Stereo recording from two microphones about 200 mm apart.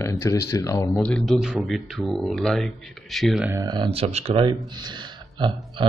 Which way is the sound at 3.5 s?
20° right (ahead or behind).